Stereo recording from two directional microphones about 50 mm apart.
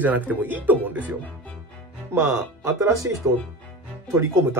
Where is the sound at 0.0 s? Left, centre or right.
Right.